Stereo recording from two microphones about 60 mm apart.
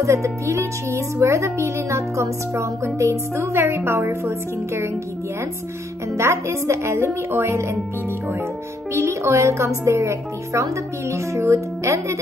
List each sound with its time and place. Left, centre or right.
0.0 s speech: right
6.1 s speech: right
8.9 s speech: right